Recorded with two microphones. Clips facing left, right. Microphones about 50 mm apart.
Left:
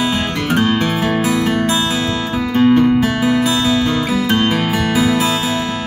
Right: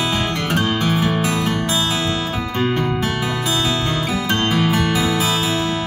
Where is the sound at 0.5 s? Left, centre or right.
Centre.